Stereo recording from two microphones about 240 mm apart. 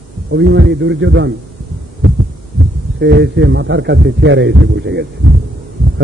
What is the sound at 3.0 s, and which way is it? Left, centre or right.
A man's voice, right.